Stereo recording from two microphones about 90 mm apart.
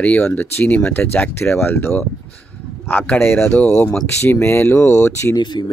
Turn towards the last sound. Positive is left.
turn(degrees=55)  # may be behind; listen again after turning